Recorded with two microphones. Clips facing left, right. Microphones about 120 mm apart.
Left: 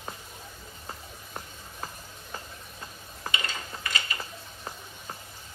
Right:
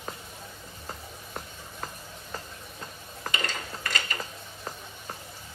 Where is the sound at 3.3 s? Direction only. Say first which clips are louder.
Right 2 dB; 45° right (ahead or behind).